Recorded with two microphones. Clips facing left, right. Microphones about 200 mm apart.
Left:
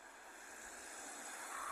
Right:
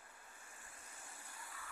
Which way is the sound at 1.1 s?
70° left (ahead or behind).